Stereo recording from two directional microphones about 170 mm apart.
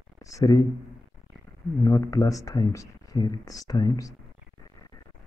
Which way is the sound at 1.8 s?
20° left (ahead or behind).